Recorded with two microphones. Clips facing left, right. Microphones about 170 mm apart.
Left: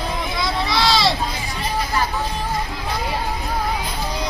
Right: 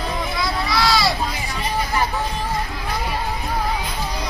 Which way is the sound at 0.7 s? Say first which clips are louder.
Even; 25° left (ahead or behind).